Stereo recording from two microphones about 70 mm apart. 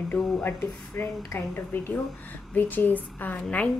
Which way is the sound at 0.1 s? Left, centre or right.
Left.